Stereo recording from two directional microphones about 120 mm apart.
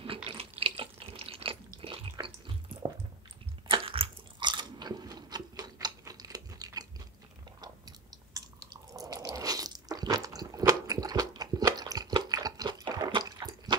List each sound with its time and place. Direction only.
0.0 s water: 50° right (ahead or behind)
3.6 s biting: 50° right (ahead or behind); by 6.9 s 30° right (ahead or behind)
8.9 s biting: 30° right (ahead or behind)